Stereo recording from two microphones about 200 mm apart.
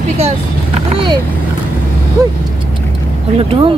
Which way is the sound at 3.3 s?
25° right (ahead or behind).